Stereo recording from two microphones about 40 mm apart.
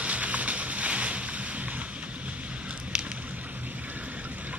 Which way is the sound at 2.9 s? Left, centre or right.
Centre.